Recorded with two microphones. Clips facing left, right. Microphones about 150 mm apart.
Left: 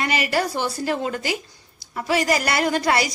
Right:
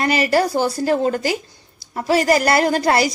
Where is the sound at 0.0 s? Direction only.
40° right (ahead or behind).